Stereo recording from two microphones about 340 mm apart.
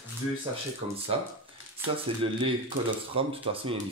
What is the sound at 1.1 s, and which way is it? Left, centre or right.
Speech, centre.